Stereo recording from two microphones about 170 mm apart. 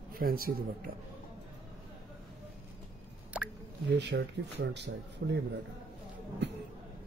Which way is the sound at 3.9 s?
85° right.